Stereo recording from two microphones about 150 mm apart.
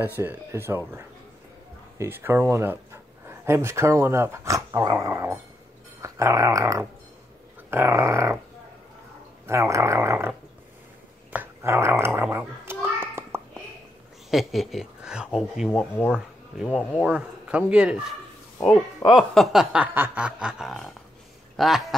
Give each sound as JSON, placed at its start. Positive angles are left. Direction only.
{"t": 0.0, "sound": "speech", "side_deg": -15}
{"t": 6.0, "sound": "dog", "side_deg": -20}
{"t": 9.5, "sound": "dog", "side_deg": -20}
{"t": 11.3, "sound": "a sound", "side_deg": -15}
{"t": 14.3, "sound": "snicker", "side_deg": 0}
{"t": 16.1, "sound": "speech", "side_deg": -5}
{"t": 19.1, "sound": "snicker", "side_deg": 0}
{"t": 21.5, "sound": "speech", "side_deg": 0}